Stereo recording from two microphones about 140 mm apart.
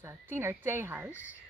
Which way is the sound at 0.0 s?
20° right (ahead or behind).